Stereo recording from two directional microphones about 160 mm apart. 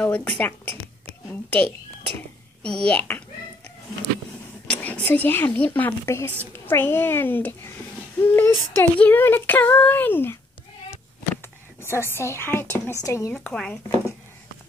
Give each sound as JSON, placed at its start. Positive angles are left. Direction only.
{"t": 0.0, "sound": "child singing", "side_deg": 10}
{"t": 2.6, "sound": "child singing", "side_deg": 5}
{"t": 4.6, "sound": "child singing", "side_deg": 10}
{"t": 11.8, "sound": "child singing", "side_deg": 15}
{"t": 13.0, "sound": "speech", "side_deg": 20}
{"t": 13.3, "sound": "child singing", "side_deg": 5}